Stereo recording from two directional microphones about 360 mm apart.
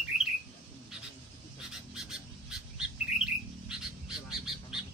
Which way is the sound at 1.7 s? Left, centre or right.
Centre.